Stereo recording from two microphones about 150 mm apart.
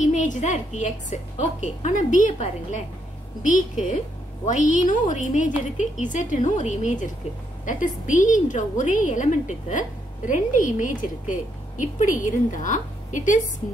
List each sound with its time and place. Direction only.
0.1 s a woman's voice: 50° left (ahead or behind)